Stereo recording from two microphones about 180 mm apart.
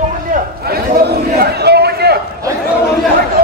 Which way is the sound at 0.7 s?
60° right (ahead or behind).